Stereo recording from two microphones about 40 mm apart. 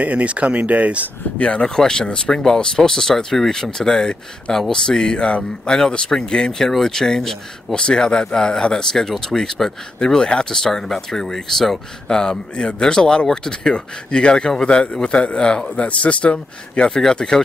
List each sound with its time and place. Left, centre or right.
0.0 s speech: right
1.4 s speech: left
1.8 s speech: centre
9.0 s speech: centre
10.6 s speech: centre
12.2 s speech: left